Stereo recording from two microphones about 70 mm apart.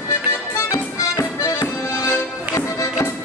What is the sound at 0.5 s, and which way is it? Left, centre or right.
Accordion, left.